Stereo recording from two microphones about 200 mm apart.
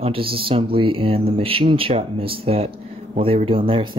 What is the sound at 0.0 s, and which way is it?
Speech, 25° right (ahead or behind).